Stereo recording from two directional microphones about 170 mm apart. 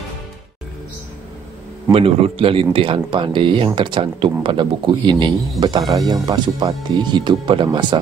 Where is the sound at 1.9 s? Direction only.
35° right (ahead or behind).